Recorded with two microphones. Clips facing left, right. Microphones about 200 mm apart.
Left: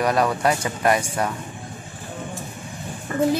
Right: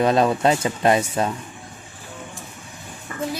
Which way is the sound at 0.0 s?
25° right (ahead or behind).